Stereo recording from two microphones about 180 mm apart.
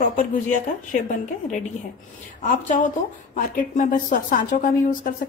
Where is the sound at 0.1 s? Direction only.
45° left (ahead or behind).